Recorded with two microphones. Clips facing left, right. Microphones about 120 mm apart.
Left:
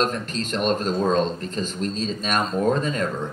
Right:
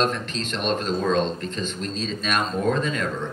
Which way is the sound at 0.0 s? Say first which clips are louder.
Even; 45° left (ahead or behind).